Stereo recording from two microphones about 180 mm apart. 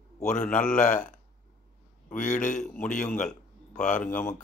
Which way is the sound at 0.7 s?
45° left (ahead or behind).